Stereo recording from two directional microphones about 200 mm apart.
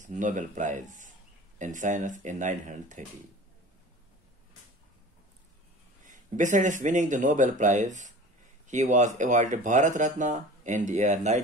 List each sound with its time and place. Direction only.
0.0 s speech: 40° right (ahead or behind)
6.0 s speech: 40° right (ahead or behind)